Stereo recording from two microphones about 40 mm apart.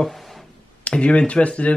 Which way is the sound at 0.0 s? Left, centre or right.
Centre.